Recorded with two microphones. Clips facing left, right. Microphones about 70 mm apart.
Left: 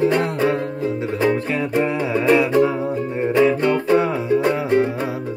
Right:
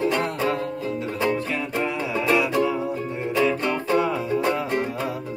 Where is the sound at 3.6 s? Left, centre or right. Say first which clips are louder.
Left 5 dB; left.